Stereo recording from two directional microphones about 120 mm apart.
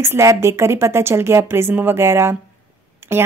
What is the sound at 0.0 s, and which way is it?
A woman's voice, 25° right (ahead or behind).